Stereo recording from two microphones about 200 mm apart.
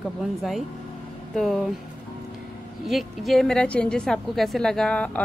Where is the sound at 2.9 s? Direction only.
Centre (ahead or behind).